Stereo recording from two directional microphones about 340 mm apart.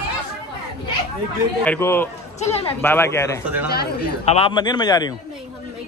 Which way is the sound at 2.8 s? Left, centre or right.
Centre.